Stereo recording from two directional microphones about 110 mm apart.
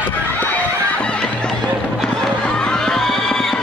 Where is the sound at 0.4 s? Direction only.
15° left (ahead or behind).